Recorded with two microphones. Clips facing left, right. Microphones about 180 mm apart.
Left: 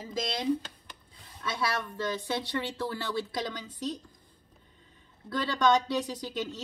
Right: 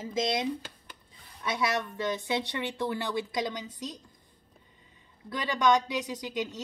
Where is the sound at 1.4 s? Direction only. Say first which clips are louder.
Right 2 dB; 20° right (ahead or behind).